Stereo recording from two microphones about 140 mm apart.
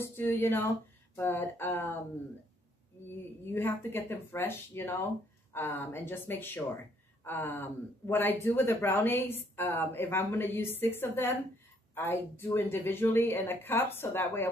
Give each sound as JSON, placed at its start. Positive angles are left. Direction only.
{"t": 0.0, "sound": "speech", "side_deg": 15}
{"t": 3.4, "sound": "speech", "side_deg": 15}